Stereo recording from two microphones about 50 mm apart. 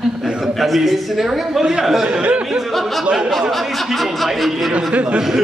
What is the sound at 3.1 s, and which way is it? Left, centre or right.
Speech, centre.